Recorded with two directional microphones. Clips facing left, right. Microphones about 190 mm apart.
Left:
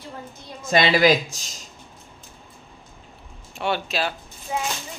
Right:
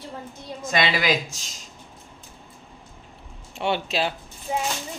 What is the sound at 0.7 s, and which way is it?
Speech, 35° left (ahead or behind).